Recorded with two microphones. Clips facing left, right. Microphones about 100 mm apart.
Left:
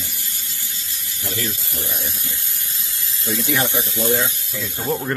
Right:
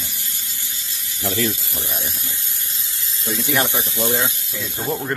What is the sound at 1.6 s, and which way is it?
Speech, 15° right (ahead or behind).